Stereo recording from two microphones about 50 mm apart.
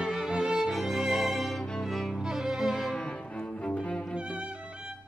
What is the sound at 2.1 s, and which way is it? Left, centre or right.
Music, centre.